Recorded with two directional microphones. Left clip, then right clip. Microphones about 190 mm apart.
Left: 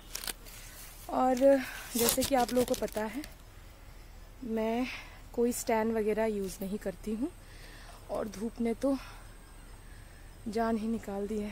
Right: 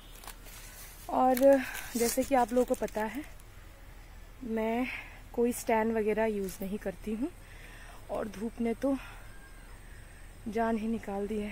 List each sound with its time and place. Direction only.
1.0 s speech: 10° right (ahead or behind)
4.6 s speech: 10° right (ahead or behind)
10.5 s speech: 5° right (ahead or behind)